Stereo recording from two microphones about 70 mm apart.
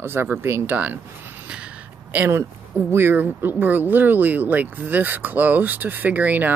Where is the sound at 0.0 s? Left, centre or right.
Right.